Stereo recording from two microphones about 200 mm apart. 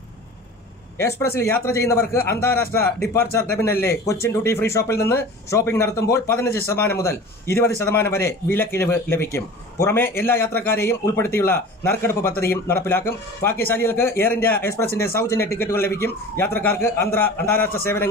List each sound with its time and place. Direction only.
0.9 s a man's voice: 10° left (ahead or behind)